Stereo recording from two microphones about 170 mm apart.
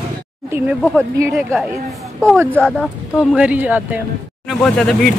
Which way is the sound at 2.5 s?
5° left (ahead or behind).